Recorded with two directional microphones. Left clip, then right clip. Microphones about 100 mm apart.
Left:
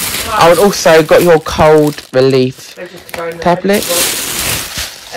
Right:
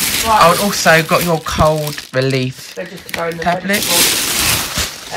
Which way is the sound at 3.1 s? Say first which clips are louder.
Left 4 dB; 70° left (ahead or behind).